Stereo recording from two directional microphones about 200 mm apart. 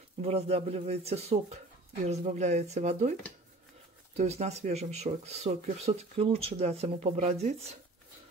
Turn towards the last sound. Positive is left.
turn(degrees=-35)  # may be behind; listen again after turning